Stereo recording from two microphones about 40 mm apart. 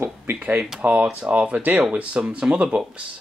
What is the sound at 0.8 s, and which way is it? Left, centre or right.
Speech, right.